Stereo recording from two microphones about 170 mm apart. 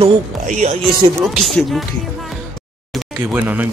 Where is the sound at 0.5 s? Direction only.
45° right (ahead or behind).